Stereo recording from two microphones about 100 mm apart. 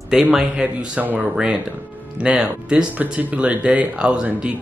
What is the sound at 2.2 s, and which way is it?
Speech, 10° right (ahead or behind).